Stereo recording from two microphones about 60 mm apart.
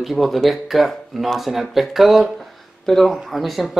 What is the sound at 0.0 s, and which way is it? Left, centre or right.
Speech, centre.